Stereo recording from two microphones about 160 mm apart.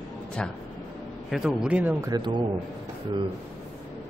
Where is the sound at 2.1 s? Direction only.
30° right (ahead or behind).